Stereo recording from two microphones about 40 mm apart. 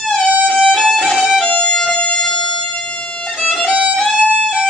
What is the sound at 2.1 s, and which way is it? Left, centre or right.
Music, centre.